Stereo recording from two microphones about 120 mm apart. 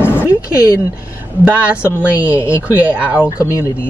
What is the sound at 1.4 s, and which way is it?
Speech, 10° right (ahead or behind).